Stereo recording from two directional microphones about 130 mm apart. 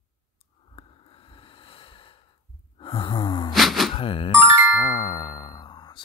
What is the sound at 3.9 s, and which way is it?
Music, 40° left (ahead or behind).